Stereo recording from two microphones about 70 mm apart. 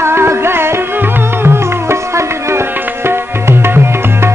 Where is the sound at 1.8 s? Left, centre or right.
Right.